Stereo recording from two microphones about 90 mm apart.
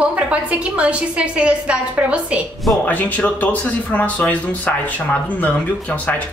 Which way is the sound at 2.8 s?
15° left (ahead or behind).